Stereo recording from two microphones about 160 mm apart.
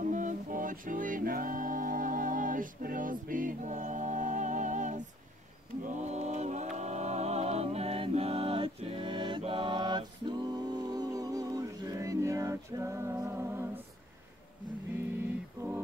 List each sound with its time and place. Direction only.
0.0 s music: 50° right (ahead or behind)
5.9 s mantra: 45° right (ahead or behind); by 13.7 s 15° right (ahead or behind)